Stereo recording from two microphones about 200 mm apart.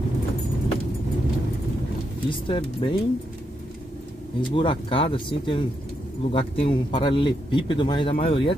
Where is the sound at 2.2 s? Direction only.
25° left (ahead or behind).